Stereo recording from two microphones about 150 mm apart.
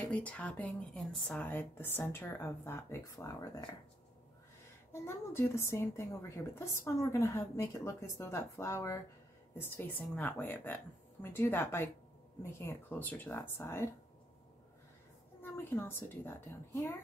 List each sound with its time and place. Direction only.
0.0 s speech: 10° left (ahead or behind)
4.9 s a woman's voice: 15° left (ahead or behind)
15.4 s speech: 15° left (ahead or behind)